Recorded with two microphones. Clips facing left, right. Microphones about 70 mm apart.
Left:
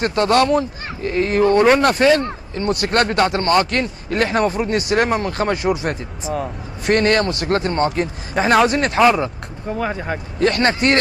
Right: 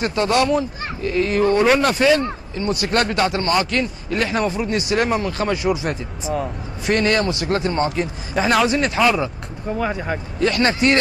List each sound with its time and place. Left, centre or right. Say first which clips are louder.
0.0 s a man's voice: left 3 dB; left
6.3 s speech: even; centre
6.9 s a man's voice: left 2 dB; left
9.8 s speech: even; left
10.4 s a man's voice: left 1 dB; left